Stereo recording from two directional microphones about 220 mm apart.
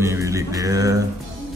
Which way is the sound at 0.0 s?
15° right (ahead or behind).